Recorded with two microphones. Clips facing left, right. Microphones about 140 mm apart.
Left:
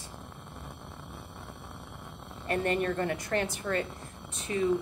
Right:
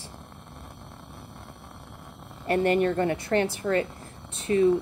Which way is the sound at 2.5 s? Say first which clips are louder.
Right 6 dB; 40° right (ahead or behind).